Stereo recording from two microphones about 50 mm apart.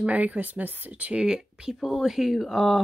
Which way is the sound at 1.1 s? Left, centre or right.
Centre.